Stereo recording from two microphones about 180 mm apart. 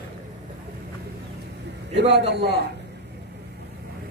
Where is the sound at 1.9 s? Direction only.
70° right (ahead or behind).